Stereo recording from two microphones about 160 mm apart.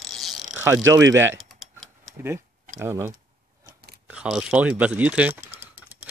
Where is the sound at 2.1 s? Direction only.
15° right (ahead or behind).